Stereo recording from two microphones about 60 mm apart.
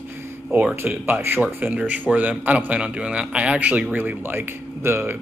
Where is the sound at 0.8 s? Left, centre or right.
Right.